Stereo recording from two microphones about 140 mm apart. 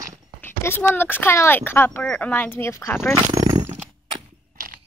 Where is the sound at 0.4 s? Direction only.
15° left (ahead or behind).